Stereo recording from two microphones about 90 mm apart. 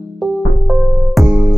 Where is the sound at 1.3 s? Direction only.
15° right (ahead or behind).